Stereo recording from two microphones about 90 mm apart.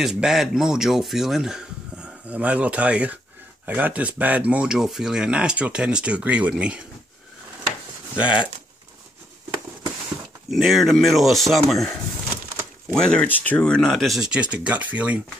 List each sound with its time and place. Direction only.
0.0 s speech: 5° right (ahead or behind)
2.2 s speech: 15° right (ahead or behind)
10.5 s speech: centre (ahead or behind)